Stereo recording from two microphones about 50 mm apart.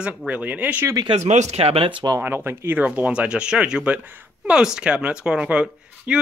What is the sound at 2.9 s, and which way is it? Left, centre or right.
Speech, right.